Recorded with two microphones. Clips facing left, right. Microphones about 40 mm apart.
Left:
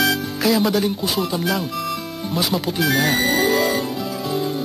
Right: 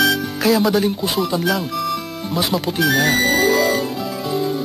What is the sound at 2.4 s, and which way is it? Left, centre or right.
Speech, centre.